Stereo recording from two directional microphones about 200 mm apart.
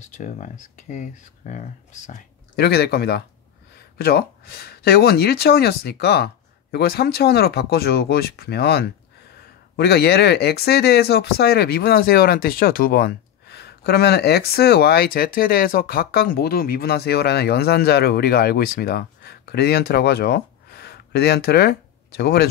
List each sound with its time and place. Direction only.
0.0 s speech: 40° left (ahead or behind)
2.5 s speech: 55° left (ahead or behind)